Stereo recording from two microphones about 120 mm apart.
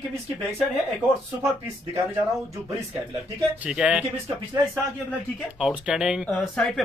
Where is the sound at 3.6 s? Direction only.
10° right (ahead or behind).